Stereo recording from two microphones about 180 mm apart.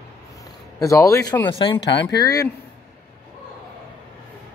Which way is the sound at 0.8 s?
15° left (ahead or behind).